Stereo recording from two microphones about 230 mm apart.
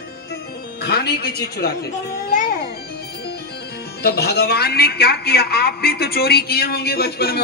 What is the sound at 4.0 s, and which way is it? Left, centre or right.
A man's voice, left.